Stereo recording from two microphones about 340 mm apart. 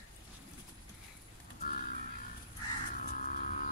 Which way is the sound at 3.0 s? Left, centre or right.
Left.